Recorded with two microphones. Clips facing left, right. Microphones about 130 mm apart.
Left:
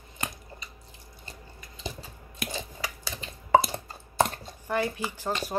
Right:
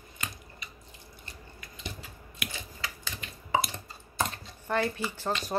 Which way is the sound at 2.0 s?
35° left (ahead or behind).